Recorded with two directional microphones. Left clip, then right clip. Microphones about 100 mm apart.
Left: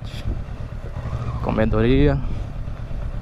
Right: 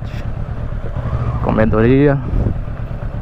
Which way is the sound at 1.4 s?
15° left (ahead or behind).